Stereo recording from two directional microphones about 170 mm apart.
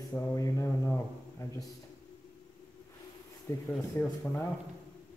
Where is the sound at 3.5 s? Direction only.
15° left (ahead or behind).